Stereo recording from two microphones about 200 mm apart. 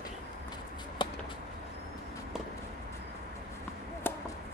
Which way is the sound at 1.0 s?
25° left (ahead or behind).